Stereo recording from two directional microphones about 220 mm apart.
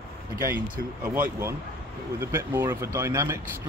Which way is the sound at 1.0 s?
10° right (ahead or behind).